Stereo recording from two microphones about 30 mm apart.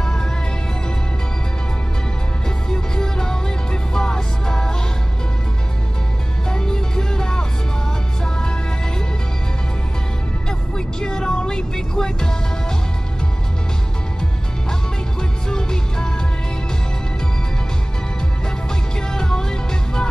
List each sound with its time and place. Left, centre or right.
0.0 s music: left
2.7 s music: left
6.5 s music: left
11.0 s music: left
14.7 s music: left
18.9 s music: left